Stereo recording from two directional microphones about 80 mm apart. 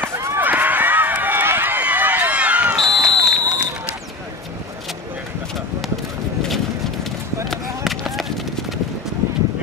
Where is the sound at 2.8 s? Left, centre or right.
Right.